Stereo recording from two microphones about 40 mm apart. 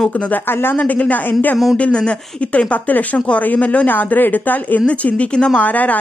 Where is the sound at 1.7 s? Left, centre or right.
Left.